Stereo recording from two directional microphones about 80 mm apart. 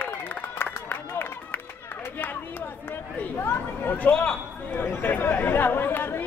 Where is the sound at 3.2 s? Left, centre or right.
Left.